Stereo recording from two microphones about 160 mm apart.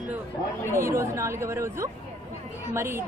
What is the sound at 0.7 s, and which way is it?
A woman's voice, 15° right (ahead or behind).